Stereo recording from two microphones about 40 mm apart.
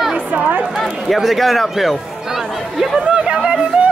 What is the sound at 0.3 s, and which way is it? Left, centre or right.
Speech, right.